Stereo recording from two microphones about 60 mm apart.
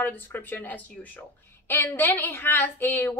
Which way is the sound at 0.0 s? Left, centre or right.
Left.